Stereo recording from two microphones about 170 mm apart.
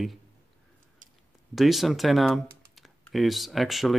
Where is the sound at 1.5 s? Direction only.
Centre (ahead or behind).